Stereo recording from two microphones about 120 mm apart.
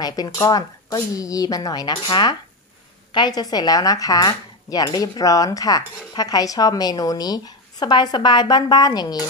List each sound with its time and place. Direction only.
0.0 s speech: 35° left (ahead or behind)